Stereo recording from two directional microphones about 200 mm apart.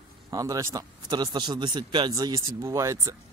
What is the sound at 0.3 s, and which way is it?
Speech, 15° right (ahead or behind).